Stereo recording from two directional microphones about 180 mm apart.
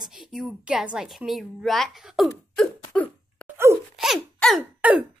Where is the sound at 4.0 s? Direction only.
Centre (ahead or behind).